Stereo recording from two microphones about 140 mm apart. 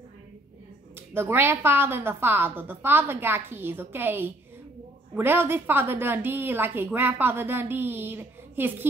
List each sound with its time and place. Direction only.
1.1 s a woman's voice: 15° right (ahead or behind)